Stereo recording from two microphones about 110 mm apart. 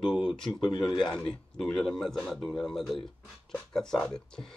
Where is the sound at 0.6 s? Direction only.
40° left (ahead or behind).